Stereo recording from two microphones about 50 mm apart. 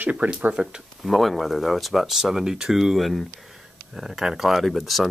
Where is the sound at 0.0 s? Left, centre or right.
Right.